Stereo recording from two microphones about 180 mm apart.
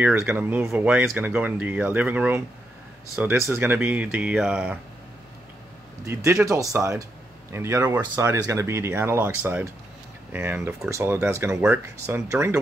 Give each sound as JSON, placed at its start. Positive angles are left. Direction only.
{"t": 0.0, "sound": "speech", "side_deg": -10}
{"t": 6.4, "sound": "speech", "side_deg": -15}